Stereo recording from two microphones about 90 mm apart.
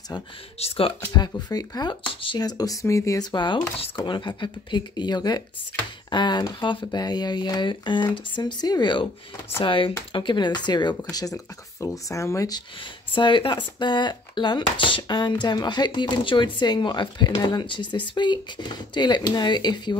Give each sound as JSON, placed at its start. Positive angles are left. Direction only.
{"t": 0.7, "sound": "speech", "side_deg": 90}
{"t": 1.1, "sound": "speech", "side_deg": 50}
{"t": 2.3, "sound": "speech", "side_deg": 45}
{"t": 3.2, "sound": "speech", "side_deg": 55}
{"t": 9.6, "sound": "speech", "side_deg": 75}
{"t": 10.1, "sound": "speech", "side_deg": 60}
{"t": 13.1, "sound": "speech", "side_deg": 65}